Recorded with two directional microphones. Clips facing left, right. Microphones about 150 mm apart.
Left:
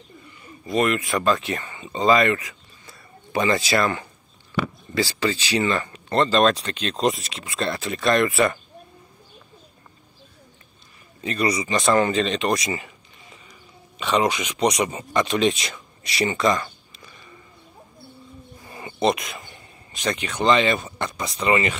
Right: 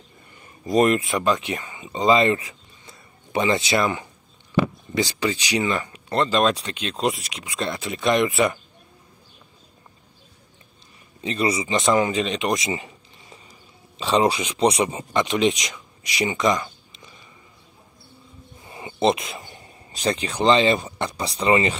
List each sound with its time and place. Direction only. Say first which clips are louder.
0.7 s speech: right 3 dB; 40° right (ahead or behind)
1.0 s speech: left 1 dB; 20° right (ahead or behind)
2.1 s a sound: right 1 dB; 25° right (ahead or behind)
4.9 s speech: left 1 dB; 15° right (ahead or behind)
11.1 s speech: even; 25° right (ahead or behind)
11.9 s speech: left 1 dB; 10° right (ahead or behind)
12.5 s a sound: even; 25° right (ahead or behind)
13.9 s speech: right 2 dB; 30° right (ahead or behind)
18.6 s a sound: right 1 dB; 20° right (ahead or behind)
21.0 s speech: right 1 dB; 30° right (ahead or behind)